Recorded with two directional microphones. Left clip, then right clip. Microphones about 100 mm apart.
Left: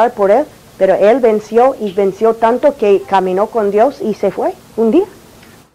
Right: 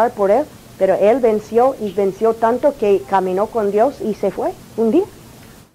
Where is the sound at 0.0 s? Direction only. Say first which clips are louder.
Left 4 dB; 35° left (ahead or behind).